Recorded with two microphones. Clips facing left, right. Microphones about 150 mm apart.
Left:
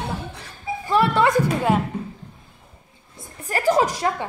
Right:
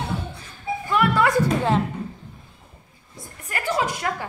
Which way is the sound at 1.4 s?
10° left (ahead or behind).